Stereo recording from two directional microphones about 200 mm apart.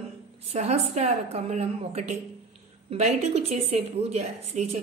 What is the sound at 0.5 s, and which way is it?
Speech, 30° right (ahead or behind).